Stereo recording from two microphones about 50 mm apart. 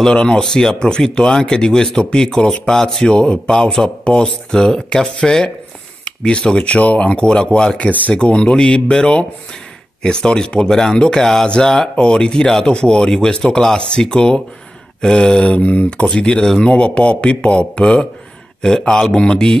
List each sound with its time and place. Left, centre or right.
0.0 s speech: centre
3.2 s speech: left
15.5 s speech: left
16.1 s speech: centre